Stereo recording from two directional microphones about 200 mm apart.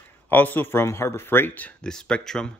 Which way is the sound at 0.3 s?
10° left (ahead or behind).